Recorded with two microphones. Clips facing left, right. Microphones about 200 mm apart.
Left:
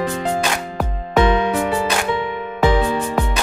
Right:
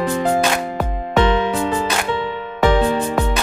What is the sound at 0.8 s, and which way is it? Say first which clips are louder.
Music: left 2 dB; 5° left (ahead or behind).